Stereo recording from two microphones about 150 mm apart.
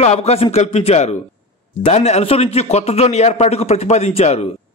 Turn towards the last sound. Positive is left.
turn(degrees=45)  # may be behind; listen again after turning